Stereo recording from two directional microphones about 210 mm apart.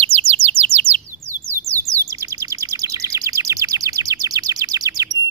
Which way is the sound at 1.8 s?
15° right (ahead or behind).